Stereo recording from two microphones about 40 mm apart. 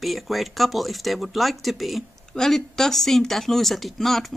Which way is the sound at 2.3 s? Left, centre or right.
Centre.